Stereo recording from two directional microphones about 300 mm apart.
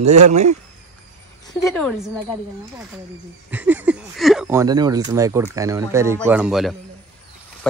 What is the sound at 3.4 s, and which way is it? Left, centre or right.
Speech, centre.